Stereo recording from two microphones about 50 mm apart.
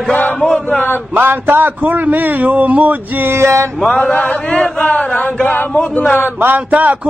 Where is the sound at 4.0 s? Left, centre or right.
Left.